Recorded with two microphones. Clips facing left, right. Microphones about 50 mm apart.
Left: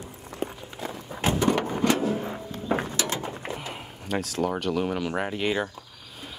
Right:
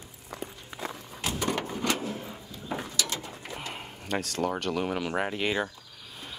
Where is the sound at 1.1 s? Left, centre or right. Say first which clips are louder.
Left 8 dB; left.